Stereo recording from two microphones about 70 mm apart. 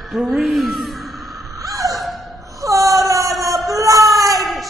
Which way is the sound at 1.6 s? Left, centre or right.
Right.